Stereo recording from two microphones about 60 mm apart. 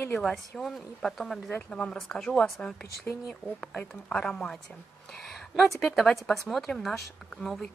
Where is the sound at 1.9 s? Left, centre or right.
Centre.